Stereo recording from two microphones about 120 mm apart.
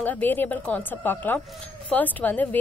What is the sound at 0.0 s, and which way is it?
A woman's voice, 15° left (ahead or behind).